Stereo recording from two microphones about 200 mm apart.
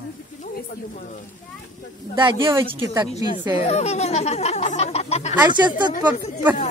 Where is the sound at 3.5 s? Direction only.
30° left (ahead or behind).